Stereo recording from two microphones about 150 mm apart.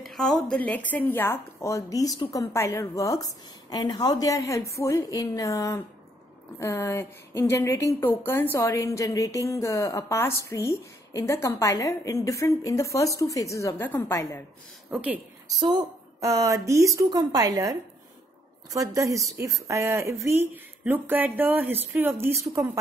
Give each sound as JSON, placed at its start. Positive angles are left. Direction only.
{"t": 0.0, "sound": "speech", "side_deg": 0}
{"t": 14.9, "sound": "a woman's voice", "side_deg": -10}
{"t": 15.6, "sound": "a woman's voice", "side_deg": -30}